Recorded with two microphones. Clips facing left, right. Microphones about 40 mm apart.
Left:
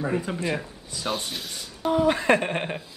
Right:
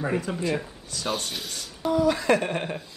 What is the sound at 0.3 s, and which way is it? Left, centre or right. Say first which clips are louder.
Speech: even; left.